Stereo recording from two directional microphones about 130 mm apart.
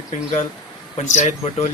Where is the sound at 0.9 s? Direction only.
60° left (ahead or behind).